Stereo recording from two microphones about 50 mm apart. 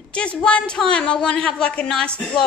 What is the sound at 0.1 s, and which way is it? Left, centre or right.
A woman's voice, left.